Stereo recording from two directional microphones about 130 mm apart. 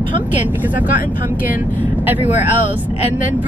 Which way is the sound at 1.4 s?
15° right (ahead or behind).